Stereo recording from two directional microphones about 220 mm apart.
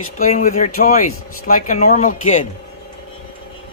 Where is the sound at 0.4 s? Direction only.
35° left (ahead or behind).